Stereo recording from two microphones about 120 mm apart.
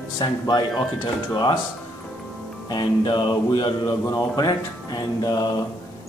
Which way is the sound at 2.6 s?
35° left (ahead or behind).